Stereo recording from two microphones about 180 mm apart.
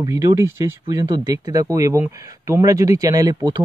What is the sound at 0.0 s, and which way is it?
Speech, 20° right (ahead or behind).